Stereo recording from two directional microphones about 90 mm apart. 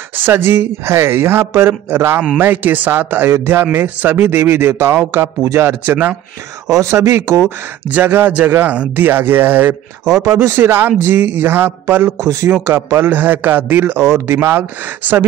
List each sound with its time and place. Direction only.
0.1 s speech: 25° right (ahead or behind)
7.9 s speech: 25° right (ahead or behind)
10.0 s speech: 35° right (ahead or behind)
12.2 s speech: 35° right (ahead or behind)